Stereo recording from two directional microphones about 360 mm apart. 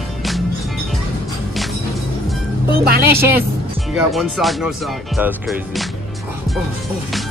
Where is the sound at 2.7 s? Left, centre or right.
Right.